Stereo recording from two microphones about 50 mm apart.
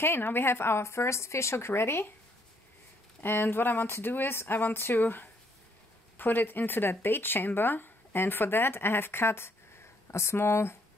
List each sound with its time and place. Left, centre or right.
0.0 s speech: left
3.2 s speech: left